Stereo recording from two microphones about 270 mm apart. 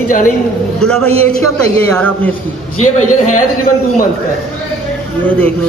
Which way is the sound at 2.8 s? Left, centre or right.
Left.